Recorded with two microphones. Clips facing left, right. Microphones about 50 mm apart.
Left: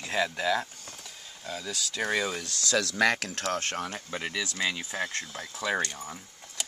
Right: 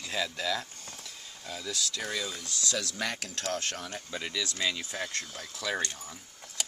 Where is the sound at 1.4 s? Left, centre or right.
Centre.